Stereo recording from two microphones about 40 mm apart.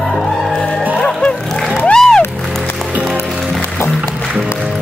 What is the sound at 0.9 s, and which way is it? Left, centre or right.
Music, left.